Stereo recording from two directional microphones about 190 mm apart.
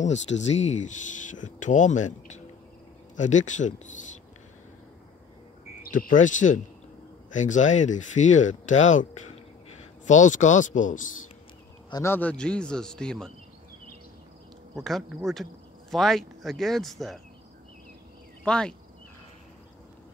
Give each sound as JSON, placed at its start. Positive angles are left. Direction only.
{"t": 0.0, "sound": "speech", "side_deg": 35}
{"t": 5.8, "sound": "speech", "side_deg": 45}
{"t": 11.9, "sound": "a man's voice", "side_deg": 15}
{"t": 14.8, "sound": "a man's voice", "side_deg": 0}
{"t": 18.4, "sound": "speech", "side_deg": 5}